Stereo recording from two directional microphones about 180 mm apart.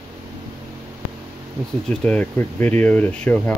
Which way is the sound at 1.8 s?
5° left (ahead or behind).